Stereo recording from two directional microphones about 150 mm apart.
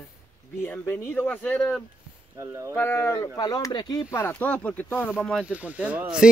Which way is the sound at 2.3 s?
20° right (ahead or behind).